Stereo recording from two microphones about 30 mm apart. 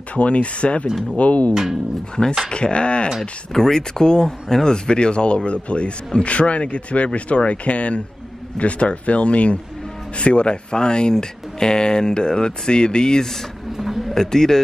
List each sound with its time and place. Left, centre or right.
0.1 s speech: left
2.5 s speech: left
3.5 s a man's voice: centre